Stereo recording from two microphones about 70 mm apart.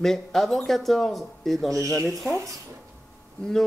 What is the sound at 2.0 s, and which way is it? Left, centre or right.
Speech, centre.